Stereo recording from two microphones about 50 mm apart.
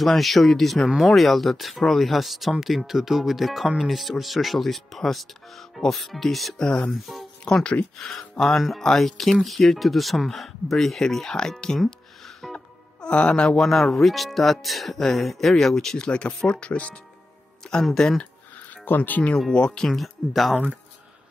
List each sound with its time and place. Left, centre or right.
0.0 s speech: centre
6.6 s speech: centre
6.9 s speech: centre
7.4 s speech: centre
12.5 s music: left
13.6 s speech: centre
16.1 s speech: left
17.9 s speech: centre
18.9 s speech: left
19.5 s speech: centre
19.9 s speech: centre